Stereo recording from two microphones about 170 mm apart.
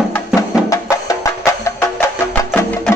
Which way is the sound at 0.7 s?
20° left (ahead or behind).